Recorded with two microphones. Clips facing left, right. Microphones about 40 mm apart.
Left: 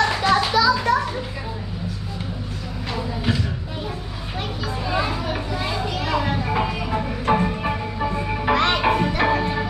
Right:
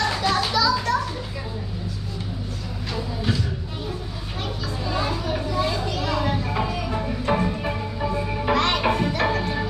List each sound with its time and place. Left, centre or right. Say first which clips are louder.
0.0 s children playing: left 4 dB; centre
4.8 s vehicle: left 2 dB; centre